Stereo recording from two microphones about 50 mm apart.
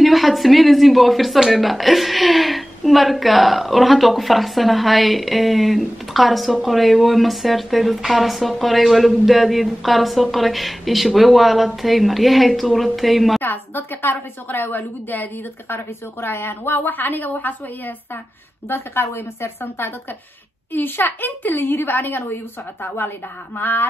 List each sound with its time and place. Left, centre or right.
0.0 s speech: centre
13.4 s a woman's voice: left
18.7 s a child's voice: left